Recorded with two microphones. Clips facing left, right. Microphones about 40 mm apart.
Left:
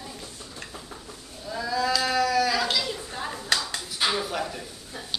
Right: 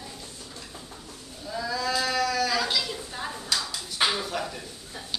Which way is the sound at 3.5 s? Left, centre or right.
Left.